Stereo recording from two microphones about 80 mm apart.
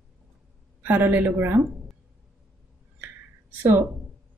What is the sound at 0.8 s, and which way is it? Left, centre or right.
Speech, right.